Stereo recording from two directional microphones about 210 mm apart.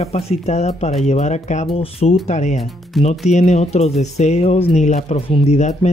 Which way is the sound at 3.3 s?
35° left (ahead or behind).